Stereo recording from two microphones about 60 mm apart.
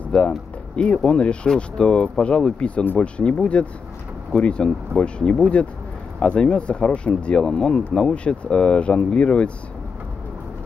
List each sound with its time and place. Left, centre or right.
0.7 s speech: centre